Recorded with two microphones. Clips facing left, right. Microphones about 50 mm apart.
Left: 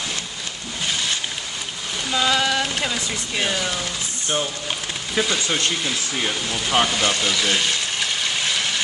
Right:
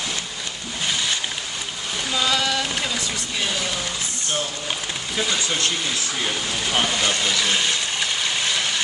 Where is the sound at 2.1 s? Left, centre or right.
Centre.